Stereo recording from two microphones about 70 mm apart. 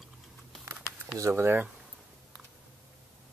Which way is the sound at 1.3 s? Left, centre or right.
Right.